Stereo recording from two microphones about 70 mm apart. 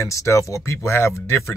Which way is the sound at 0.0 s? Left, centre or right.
Left.